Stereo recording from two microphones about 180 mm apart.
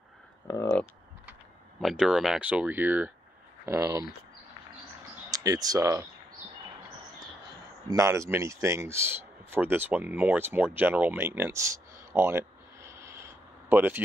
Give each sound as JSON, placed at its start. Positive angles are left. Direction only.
{"t": 1.8, "sound": "speech", "side_deg": 0}
{"t": 5.3, "sound": "speech", "side_deg": -20}
{"t": 7.9, "sound": "speech", "side_deg": -15}